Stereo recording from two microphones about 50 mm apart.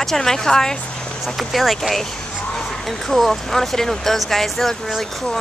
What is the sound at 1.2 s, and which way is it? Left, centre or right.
A woman's voice, centre.